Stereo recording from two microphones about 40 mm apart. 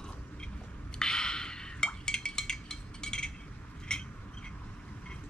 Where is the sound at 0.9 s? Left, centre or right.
Centre.